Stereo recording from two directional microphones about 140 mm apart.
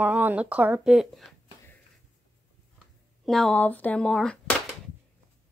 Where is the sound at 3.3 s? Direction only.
5° left (ahead or behind).